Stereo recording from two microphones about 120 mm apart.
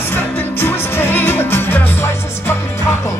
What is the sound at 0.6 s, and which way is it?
Music, 20° left (ahead or behind).